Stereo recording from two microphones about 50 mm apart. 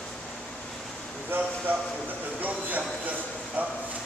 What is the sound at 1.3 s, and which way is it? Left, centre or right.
Speech, right.